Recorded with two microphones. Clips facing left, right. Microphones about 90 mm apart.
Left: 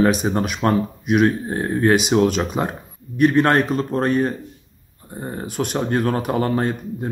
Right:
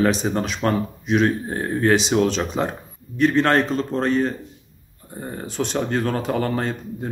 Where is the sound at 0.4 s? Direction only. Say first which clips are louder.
Left 2 dB; 15° left (ahead or behind).